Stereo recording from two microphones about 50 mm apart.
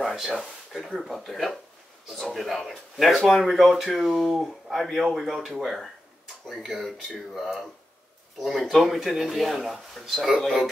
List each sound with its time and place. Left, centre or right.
0.0 s speech: centre